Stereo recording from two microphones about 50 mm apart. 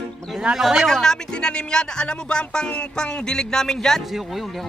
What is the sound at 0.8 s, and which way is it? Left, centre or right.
Speech, centre.